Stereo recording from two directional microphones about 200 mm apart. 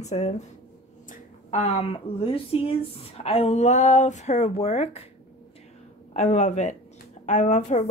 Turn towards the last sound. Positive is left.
turn(degrees=35)  # may be behind; listen again after turning